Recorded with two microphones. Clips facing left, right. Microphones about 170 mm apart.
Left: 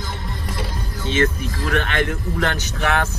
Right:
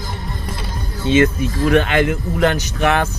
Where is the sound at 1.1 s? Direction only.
15° right (ahead or behind).